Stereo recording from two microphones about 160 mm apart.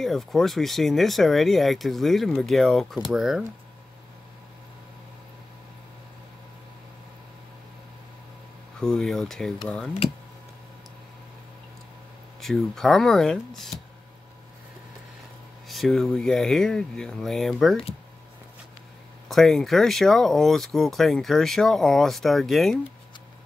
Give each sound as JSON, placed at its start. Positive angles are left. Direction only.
{"t": 0.0, "sound": "speech", "side_deg": 0}
{"t": 8.7, "sound": "speech", "side_deg": 5}
{"t": 12.4, "sound": "speech", "side_deg": 0}
{"t": 15.7, "sound": "speech", "side_deg": 0}
{"t": 19.2, "sound": "speech", "side_deg": 0}